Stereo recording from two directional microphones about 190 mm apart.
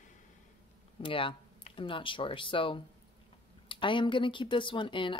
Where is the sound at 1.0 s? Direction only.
25° left (ahead or behind).